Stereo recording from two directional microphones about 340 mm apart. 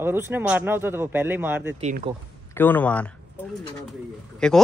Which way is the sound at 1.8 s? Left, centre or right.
Right.